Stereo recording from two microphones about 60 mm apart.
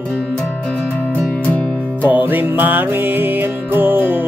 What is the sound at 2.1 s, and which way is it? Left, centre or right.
Music, right.